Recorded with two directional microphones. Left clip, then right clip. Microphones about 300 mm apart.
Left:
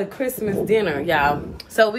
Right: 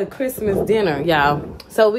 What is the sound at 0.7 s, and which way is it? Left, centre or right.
Speech, right.